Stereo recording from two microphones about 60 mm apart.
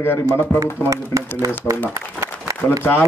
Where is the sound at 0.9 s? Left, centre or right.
Right.